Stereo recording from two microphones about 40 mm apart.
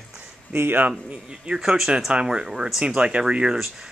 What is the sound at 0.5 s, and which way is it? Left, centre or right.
Speech, right.